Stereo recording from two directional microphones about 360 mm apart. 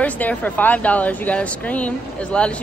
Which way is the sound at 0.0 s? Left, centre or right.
Centre.